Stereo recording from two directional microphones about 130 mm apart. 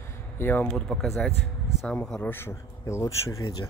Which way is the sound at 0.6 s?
5° left (ahead or behind).